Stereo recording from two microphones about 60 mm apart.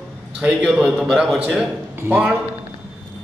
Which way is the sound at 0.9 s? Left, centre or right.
Centre.